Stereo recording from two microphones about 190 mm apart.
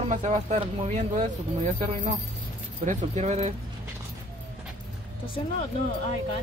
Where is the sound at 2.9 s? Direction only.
35° right (ahead or behind).